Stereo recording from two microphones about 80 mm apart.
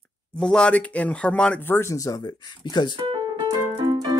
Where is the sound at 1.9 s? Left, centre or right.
Left.